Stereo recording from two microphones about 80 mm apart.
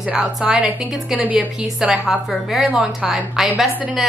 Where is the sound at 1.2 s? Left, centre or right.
Centre.